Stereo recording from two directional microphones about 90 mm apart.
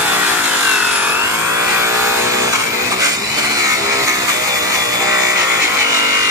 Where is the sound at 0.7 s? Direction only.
15° right (ahead or behind).